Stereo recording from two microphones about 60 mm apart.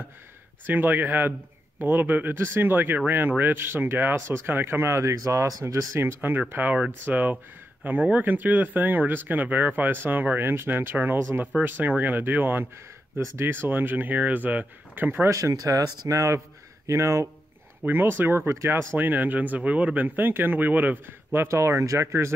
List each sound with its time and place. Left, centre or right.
0.7 s speech: right
5.5 s speech: right
5.9 s speech: right
6.5 s speech: right
13.1 s speech: right
13.7 s speech: right
15.2 s speech: right
17.8 s speech: right
18.5 s speech: right
18.9 s speech: right
21.5 s speech: right